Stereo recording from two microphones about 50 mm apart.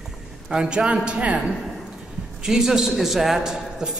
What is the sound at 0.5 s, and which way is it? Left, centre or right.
Speech, centre.